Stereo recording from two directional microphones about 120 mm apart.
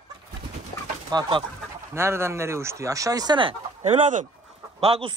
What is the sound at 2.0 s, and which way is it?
Speech, 20° right (ahead or behind).